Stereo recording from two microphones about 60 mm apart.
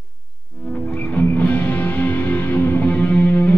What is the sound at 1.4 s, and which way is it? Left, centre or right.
Music, left.